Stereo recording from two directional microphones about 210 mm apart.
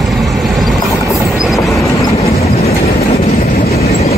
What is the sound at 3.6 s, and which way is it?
Train, 45° left (ahead or behind).